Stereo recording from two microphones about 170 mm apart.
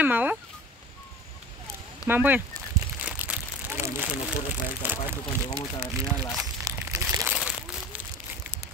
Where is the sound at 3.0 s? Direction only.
10° right (ahead or behind).